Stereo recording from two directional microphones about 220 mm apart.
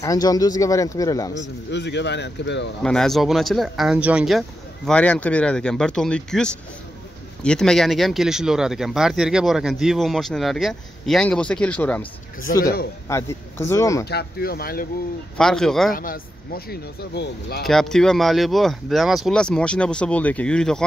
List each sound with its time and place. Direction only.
0.0 s speech: 15° left (ahead or behind)
1.7 s speech: 50° left (ahead or behind)
2.8 s speech: 5° left (ahead or behind)
12.5 s speech: 40° left (ahead or behind)
13.1 s speech: 10° left (ahead or behind)
14.0 s speech: 45° left (ahead or behind)
15.3 s speech: centre (ahead or behind)
15.9 s speech: 40° left (ahead or behind)
17.6 s speech: centre (ahead or behind)